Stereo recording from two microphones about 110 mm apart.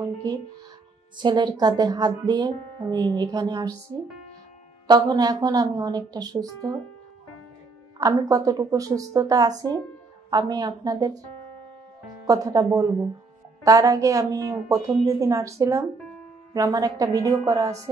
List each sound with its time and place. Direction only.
1.1 s speech: 45° right (ahead or behind)
4.8 s speech: 40° right (ahead or behind)
8.0 s speech: 30° right (ahead or behind)
16.5 s speech: 30° right (ahead or behind)